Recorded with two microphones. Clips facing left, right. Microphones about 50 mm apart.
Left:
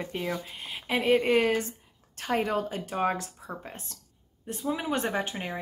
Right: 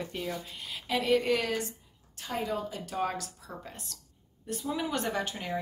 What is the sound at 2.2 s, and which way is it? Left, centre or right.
Speech, left.